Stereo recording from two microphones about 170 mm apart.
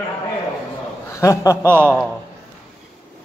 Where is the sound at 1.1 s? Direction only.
20° left (ahead or behind).